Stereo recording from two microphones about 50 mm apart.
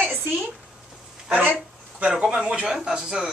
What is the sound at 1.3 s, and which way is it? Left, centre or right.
A man's voice, right.